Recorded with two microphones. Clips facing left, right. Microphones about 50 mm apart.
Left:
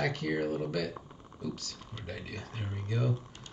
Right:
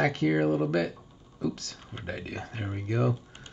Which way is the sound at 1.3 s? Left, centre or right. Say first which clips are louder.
Right 7 dB; right.